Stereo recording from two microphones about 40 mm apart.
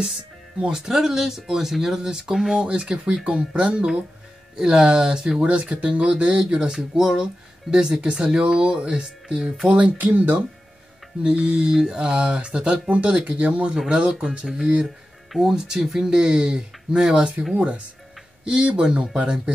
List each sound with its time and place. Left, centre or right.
0.6 s speech: centre
2.6 s speech: right
5.4 s speech: right
9.9 s speech: right
11.2 s speech: right
15.3 s speech: centre
17.6 s speech: right
18.4 s speech: right